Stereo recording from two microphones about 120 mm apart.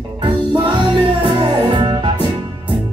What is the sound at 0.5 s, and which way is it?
Music, 40° right (ahead or behind).